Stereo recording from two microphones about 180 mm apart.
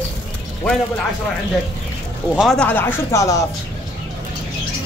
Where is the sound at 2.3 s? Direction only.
Centre (ahead or behind); by 3.4 s 15° left (ahead or behind).